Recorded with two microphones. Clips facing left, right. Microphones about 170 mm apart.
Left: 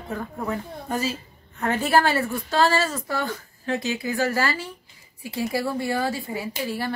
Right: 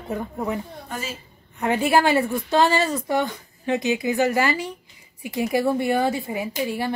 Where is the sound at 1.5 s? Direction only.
15° right (ahead or behind).